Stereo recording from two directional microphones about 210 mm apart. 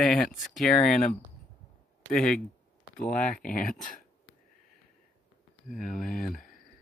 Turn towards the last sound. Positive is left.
turn(degrees=40)  # may be behind; listen again after turning